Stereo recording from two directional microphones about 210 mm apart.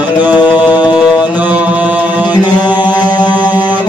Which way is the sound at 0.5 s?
10° right (ahead or behind).